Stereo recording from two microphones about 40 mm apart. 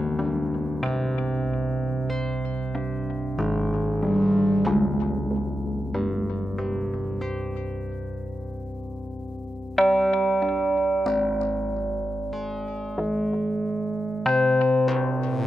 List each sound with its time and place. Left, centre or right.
0.1 s music: centre
3.3 s music: centre
5.9 s music: centre
6.2 s music: centre
6.5 s music: centre
7.2 s music: centre
9.8 s music: centre
11.5 s music: centre
12.3 s music: centre
13.9 s music: centre
14.3 s keyboard: centre
14.8 s music: centre
15.0 s music: centre